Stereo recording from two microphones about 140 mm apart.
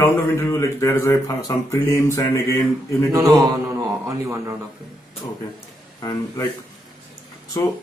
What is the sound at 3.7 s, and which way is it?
Speech, 25° right (ahead or behind).